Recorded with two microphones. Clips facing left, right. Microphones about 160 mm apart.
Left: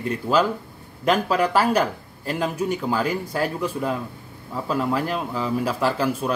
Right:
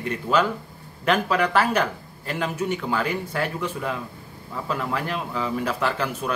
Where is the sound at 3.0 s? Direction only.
35° left (ahead or behind).